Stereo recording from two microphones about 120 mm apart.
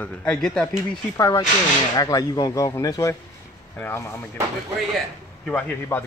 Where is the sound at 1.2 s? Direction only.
25° left (ahead or behind).